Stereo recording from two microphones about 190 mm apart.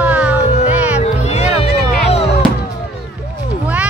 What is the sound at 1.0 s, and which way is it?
Music, 35° left (ahead or behind).